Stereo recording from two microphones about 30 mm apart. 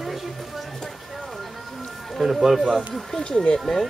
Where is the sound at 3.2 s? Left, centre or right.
Left.